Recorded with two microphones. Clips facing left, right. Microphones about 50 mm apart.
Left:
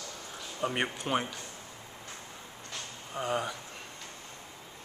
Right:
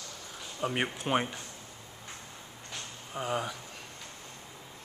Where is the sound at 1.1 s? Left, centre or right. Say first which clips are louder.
Right 3 dB; centre.